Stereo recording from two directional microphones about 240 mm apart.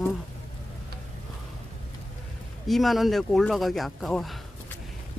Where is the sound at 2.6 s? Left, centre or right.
Centre.